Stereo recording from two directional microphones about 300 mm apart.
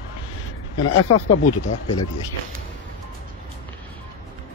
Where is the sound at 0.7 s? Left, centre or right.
Left.